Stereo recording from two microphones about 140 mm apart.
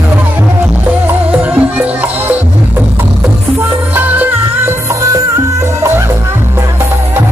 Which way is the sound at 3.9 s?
10° right (ahead or behind).